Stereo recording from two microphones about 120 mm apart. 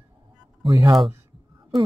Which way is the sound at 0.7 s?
25° right (ahead or behind).